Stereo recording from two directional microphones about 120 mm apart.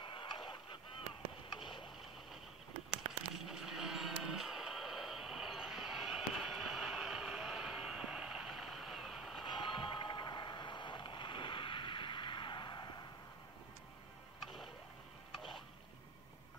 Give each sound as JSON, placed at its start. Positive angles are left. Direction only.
{"t": 0.0, "sound": "goose", "side_deg": 45}
{"t": 3.1, "sound": "a sound", "side_deg": 0}
{"t": 9.5, "sound": "mechanisms", "side_deg": 45}
{"t": 14.4, "sound": "music", "side_deg": 0}